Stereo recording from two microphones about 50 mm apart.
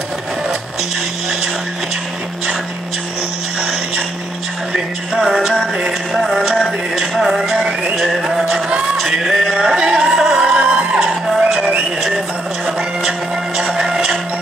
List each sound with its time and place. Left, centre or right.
4.7 s music: centre
6.1 s music: centre
10.6 s music: right
11.2 s music: centre
13.6 s music: centre